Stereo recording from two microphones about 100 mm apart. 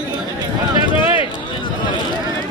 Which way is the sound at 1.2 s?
55° left (ahead or behind).